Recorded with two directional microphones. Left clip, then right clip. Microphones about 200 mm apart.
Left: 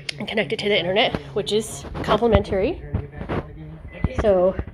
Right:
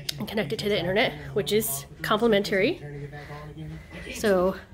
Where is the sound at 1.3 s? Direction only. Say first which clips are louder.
Left 2 dB; 10° right (ahead or behind).